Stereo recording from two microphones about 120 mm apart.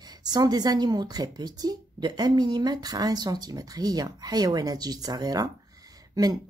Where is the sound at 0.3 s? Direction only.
35° right (ahead or behind).